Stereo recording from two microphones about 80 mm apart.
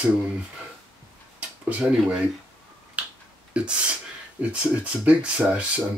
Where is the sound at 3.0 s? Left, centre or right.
Centre.